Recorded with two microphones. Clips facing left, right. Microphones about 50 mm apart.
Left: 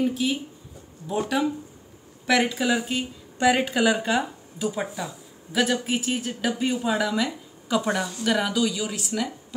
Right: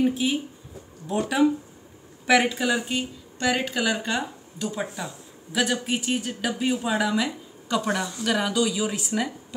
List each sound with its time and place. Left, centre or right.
0.0 s speech: centre